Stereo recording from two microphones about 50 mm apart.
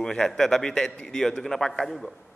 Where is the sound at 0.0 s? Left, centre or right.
Centre.